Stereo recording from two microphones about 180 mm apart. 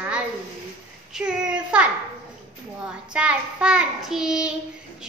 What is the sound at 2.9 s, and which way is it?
A child's voice, 5° right (ahead or behind).